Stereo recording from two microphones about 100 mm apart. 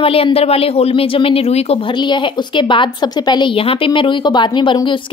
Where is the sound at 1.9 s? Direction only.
50° left (ahead or behind).